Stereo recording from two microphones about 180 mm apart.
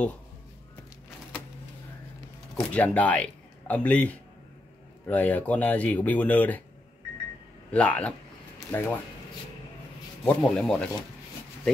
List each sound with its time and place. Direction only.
2.5 s speech: 10° left (ahead or behind)
7.7 s speech: 5° left (ahead or behind)
10.2 s speech: 5° left (ahead or behind)